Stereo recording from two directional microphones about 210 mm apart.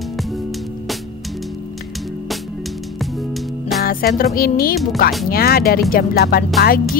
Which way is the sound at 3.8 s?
45° left (ahead or behind).